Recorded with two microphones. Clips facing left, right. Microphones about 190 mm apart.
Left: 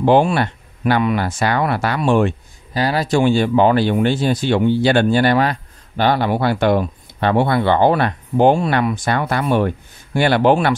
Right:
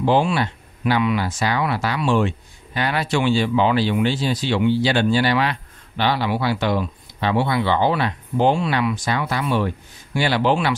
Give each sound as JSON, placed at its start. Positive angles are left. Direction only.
{"t": 0.0, "sound": "speech", "side_deg": 55}
{"t": 2.7, "sound": "speech", "side_deg": 35}